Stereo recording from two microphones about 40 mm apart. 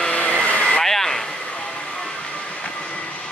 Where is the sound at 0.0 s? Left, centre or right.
Left.